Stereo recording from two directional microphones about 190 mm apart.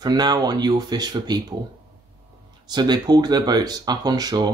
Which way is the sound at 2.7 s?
20° right (ahead or behind).